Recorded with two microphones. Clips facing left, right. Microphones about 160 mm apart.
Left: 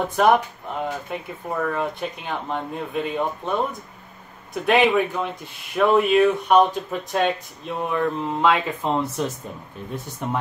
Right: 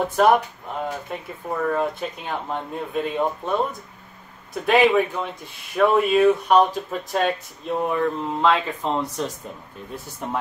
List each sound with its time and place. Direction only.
0.1 s speech: centre (ahead or behind)
4.6 s speech: centre (ahead or behind)